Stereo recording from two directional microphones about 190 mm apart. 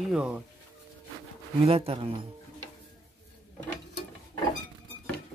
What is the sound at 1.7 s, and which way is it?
Speech, 30° right (ahead or behind).